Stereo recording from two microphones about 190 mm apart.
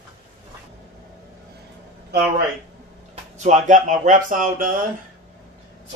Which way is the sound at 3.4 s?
40° right (ahead or behind).